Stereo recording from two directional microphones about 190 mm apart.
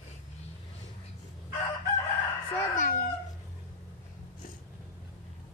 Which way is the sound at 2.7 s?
40° left (ahead or behind).